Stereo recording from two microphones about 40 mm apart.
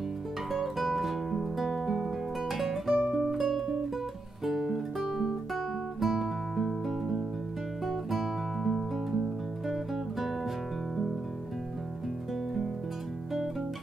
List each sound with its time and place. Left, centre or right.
0.5 s music: centre
3.0 s music: right
3.3 s music: centre
4.5 s guitar: centre
7.8 s music: centre